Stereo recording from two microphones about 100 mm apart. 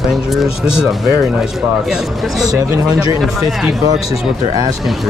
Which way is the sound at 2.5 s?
40° right (ahead or behind).